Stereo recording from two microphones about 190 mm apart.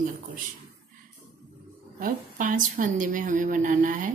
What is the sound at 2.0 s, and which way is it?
A woman's voice, 45° right (ahead or behind).